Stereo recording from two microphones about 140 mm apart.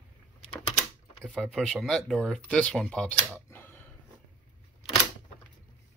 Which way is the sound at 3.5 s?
15° left (ahead or behind).